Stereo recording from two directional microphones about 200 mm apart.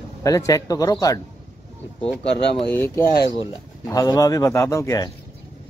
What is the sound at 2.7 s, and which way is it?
Speech, 10° left (ahead or behind).